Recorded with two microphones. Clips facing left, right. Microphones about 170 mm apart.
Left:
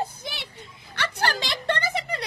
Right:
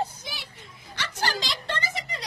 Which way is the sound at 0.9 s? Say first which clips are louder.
Left 3 dB; 60° left (ahead or behind).